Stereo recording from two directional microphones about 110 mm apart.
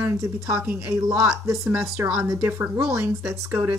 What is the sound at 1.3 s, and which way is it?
A woman's voice, 30° right (ahead or behind).